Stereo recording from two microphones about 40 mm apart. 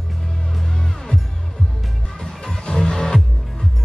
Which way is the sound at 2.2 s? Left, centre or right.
Left.